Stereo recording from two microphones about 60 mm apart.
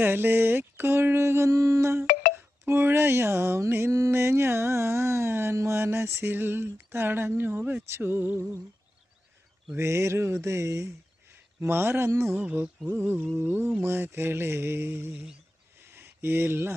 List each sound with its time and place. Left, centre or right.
0.0 s speech: right
1.5 s a sound: right
2.6 s speech: right
4.1 s music: right
6.3 s speech: right
9.8 s speech: right
11.6 s speech: right
12.1 s speech: right
12.4 s mantra: right
13.8 s speech: right
15.8 s a sound: right